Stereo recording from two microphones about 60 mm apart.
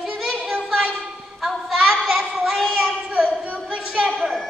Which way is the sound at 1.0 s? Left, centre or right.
Centre.